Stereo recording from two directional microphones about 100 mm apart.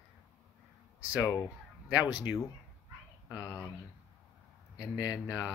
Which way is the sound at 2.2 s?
30° left (ahead or behind).